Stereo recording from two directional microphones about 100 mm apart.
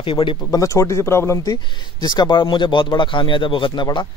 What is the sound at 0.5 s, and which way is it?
Speech, 35° left (ahead or behind).